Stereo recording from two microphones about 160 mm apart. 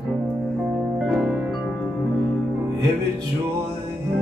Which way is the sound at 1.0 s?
Centre (ahead or behind).